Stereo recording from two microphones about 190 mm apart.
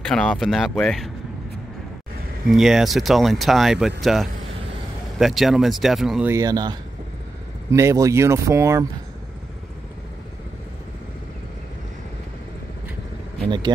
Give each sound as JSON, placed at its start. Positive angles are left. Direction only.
{"t": 0.1, "sound": "speech", "side_deg": 5}
{"t": 2.5, "sound": "speech", "side_deg": 0}
{"t": 6.3, "sound": "speech", "side_deg": -20}
{"t": 13.5, "sound": "speech", "side_deg": -25}